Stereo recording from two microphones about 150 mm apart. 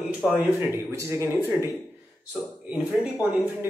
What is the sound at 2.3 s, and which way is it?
A man's voice, 10° right (ahead or behind).